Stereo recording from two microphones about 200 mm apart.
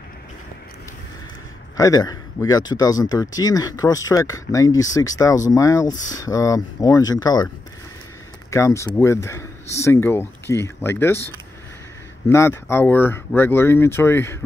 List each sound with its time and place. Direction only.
1.8 s speech: 20° left (ahead or behind)
8.5 s speech: 15° left (ahead or behind)